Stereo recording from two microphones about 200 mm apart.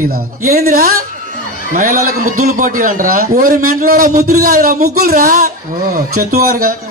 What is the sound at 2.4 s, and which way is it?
A man's voice, 40° right (ahead or behind).